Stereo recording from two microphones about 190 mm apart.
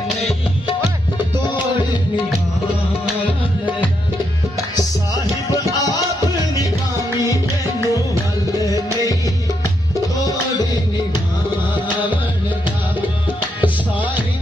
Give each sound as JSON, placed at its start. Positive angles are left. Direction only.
{"t": 5.5, "sound": "music", "side_deg": 20}
{"t": 13.6, "sound": "music", "side_deg": -10}